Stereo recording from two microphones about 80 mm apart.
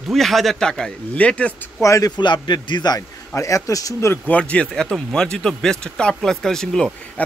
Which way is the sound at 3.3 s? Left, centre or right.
Left.